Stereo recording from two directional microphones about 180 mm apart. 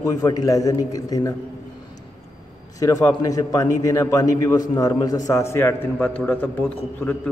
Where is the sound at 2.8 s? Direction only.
20° left (ahead or behind).